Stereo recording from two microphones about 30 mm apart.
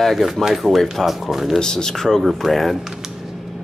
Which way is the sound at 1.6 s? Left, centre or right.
Left.